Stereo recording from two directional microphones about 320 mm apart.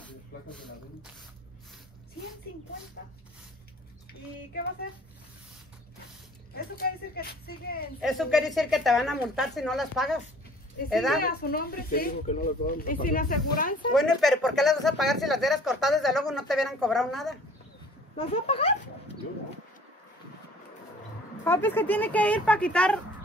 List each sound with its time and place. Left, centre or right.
6.5 s speech: left
8.0 s speech: centre
11.2 s speech: left
13.9 s speech: centre
18.1 s speech: centre
21.5 s speech: centre